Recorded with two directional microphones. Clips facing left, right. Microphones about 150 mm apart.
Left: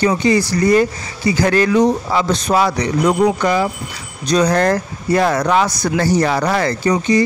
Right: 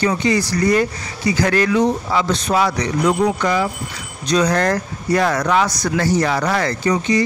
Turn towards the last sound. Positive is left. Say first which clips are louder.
# left 2 dB
turn(degrees=35)  # may be behind; listen again after turning